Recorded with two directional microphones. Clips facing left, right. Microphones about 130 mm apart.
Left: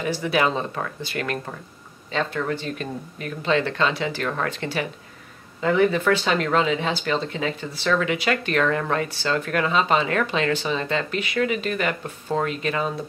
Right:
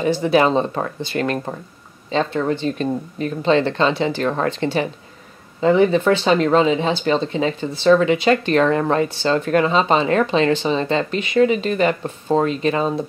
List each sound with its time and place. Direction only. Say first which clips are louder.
0.0 s speech: right 6 dB; 30° right (ahead or behind)